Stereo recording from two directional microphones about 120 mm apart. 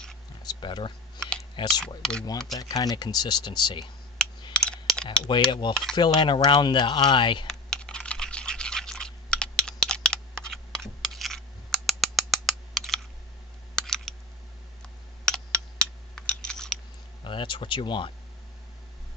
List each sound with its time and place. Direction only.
0.4 s speech: 40° left (ahead or behind)
2.0 s speech: 5° left (ahead or behind)
2.5 s speech: 30° left (ahead or behind)
4.6 s computer keyboard: 10° left (ahead or behind)
5.3 s speech: 40° left (ahead or behind)
7.4 s computer keyboard: 5° left (ahead or behind)
13.7 s a sound: 5° left (ahead or behind)
16.2 s computer keyboard: 5° left (ahead or behind)
17.2 s speech: 45° left (ahead or behind)